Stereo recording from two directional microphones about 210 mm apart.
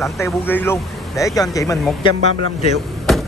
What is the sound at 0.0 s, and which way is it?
Speech, 10° left (ahead or behind).